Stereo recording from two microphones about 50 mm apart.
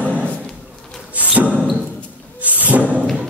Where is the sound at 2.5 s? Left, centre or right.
Right.